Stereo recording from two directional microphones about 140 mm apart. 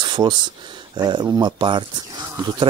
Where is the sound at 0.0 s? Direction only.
30° right (ahead or behind).